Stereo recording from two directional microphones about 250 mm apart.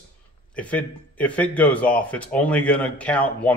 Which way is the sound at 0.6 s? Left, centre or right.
Centre.